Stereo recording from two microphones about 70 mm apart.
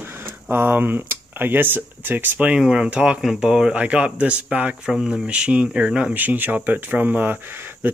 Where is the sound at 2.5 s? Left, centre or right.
Centre.